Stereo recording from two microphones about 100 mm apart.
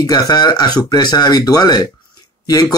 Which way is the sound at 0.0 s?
40° left (ahead or behind).